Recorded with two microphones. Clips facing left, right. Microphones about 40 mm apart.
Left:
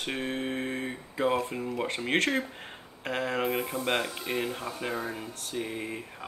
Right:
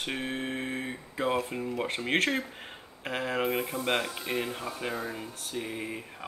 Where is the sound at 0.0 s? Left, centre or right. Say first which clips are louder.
Left 1 dB; centre.